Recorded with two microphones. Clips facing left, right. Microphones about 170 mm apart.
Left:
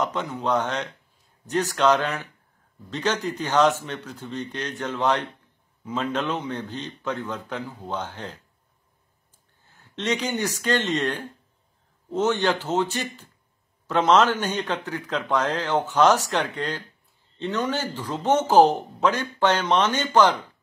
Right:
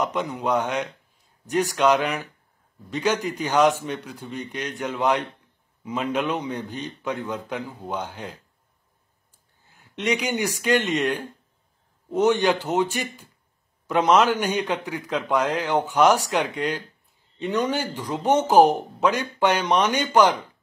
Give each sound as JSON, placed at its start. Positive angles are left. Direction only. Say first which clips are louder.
{"t": 0.0, "sound": "a man's voice", "louder": "right 1 dB", "side_deg": -10}
{"t": 9.7, "sound": "a man's voice", "louder": "right 2 dB", "side_deg": -10}